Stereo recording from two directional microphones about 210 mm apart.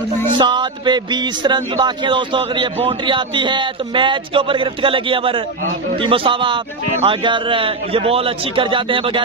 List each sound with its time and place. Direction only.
0.4 s a man's voice: 20° right (ahead or behind)